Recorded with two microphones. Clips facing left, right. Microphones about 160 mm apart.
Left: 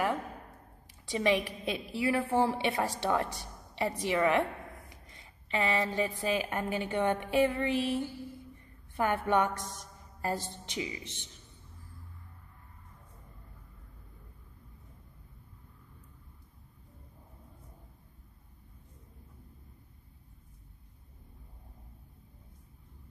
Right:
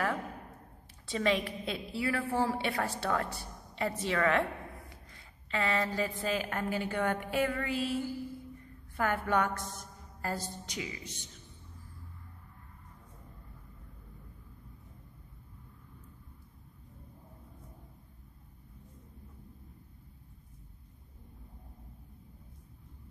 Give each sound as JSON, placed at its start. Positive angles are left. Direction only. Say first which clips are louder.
{"t": 1.0, "sound": "a woman's voice", "louder": "left 2 dB", "side_deg": 15}
{"t": 3.7, "sound": "a sound", "louder": "left 2 dB", "side_deg": 15}
{"t": 6.2, "sound": "a woman's voice", "louder": "left 2 dB", "side_deg": 20}